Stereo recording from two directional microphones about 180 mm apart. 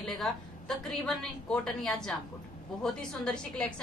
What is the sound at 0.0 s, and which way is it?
A woman's voice, centre (ahead or behind).